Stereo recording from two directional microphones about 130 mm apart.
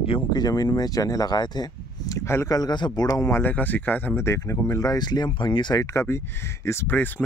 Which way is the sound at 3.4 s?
15° left (ahead or behind).